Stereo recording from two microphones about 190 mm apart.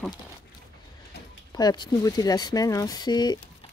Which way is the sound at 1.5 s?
20° left (ahead or behind).